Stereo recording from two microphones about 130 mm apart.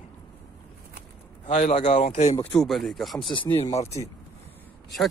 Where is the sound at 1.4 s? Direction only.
60° left (ahead or behind).